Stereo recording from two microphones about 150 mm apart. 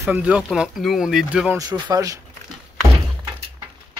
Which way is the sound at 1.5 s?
25° right (ahead or behind).